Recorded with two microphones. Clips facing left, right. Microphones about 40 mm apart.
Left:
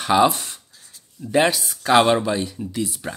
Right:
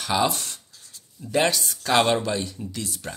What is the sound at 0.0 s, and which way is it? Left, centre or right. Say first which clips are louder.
Speech: left 6 dB; centre.